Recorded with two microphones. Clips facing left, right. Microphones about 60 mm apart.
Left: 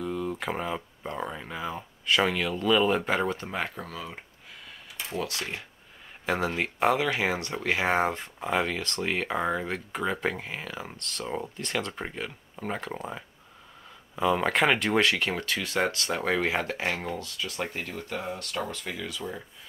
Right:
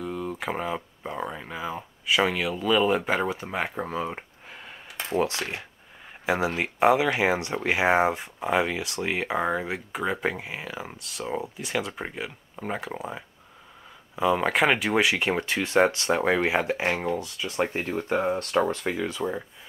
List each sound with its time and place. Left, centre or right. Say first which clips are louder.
0.0 s speech: even; centre
3.7 s a sound: right 8 dB; right
6.2 s speech: right 2 dB; centre; by 19.4 s right